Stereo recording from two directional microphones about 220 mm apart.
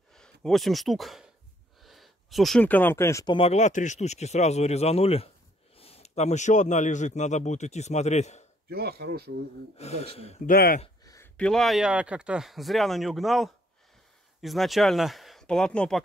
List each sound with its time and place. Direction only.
0.1 s a man's voice: centre (ahead or behind); by 8.5 s 30° left (ahead or behind)
8.6 s speech: 45° right (ahead or behind)
9.8 s speech: 30° left (ahead or behind)
10.5 s a man's voice: 40° left (ahead or behind)
11.1 s speech: 10° left (ahead or behind)